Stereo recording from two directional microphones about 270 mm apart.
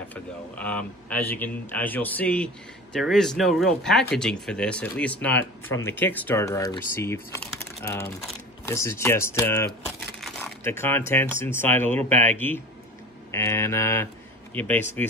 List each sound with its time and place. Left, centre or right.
0.1 s speech: centre
5.4 s speech: left
5.9 s speech: centre